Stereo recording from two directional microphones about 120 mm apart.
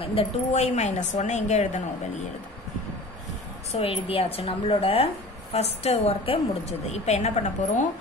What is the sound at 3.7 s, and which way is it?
Speech, 50° left (ahead or behind).